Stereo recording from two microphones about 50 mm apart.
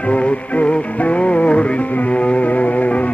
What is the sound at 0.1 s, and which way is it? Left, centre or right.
Music, left.